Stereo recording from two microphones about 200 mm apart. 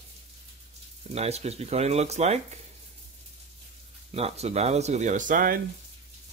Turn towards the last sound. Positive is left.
turn(degrees=-40)  # may be behind; listen again after turning